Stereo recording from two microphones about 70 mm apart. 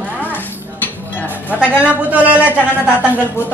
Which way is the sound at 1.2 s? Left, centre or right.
Centre.